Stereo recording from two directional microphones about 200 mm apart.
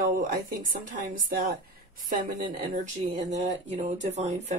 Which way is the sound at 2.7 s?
40° right (ahead or behind).